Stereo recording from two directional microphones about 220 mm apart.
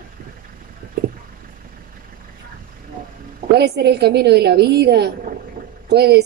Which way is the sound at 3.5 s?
50° right (ahead or behind).